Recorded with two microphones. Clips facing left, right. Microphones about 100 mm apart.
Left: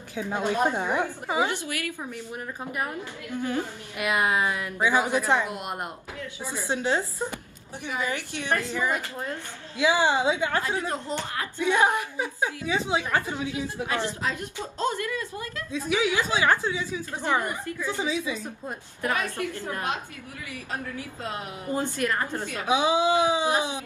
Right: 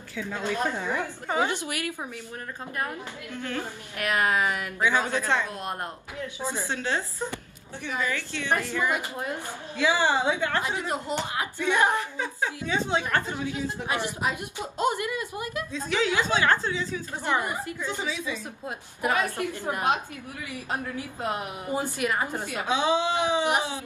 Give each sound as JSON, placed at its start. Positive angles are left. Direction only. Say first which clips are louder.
{"t": 0.1, "sound": "a woman's voice", "louder": "left 3 dB", "side_deg": 20}
{"t": 2.6, "sound": "a woman's voice", "louder": "even", "side_deg": 15}
{"t": 6.4, "sound": "a woman's voice", "louder": "right 3 dB", "side_deg": -20}
{"t": 6.7, "sound": "a woman's voice", "louder": "left 3 dB", "side_deg": 15}
{"t": 8.9, "sound": "a woman's voice", "louder": "right 1 dB", "side_deg": -15}
{"t": 9.8, "sound": "a woman's voice", "louder": "left 1 dB", "side_deg": 15}
{"t": 10.6, "sound": "a woman's voice", "louder": "even", "side_deg": -15}
{"t": 11.5, "sound": "a woman's voice", "louder": "left 2 dB", "side_deg": 15}
{"t": 13.8, "sound": "a woman's voice", "louder": "right 1 dB", "side_deg": -15}
{"t": 15.7, "sound": "a woman's voice", "louder": "left 2 dB", "side_deg": 10}
{"t": 17.4, "sound": "a woman's voice", "louder": "even", "side_deg": -15}
{"t": 17.9, "sound": "a woman's voice", "louder": "left 6 dB", "side_deg": 30}
{"t": 18.9, "sound": "a woman's voice", "louder": "right 2 dB", "side_deg": -20}
{"t": 22.7, "sound": "a woman's voice", "louder": "left 3 dB", "side_deg": 15}